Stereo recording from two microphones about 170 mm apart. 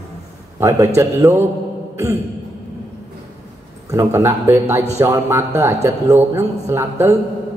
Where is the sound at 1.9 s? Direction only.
15° right (ahead or behind).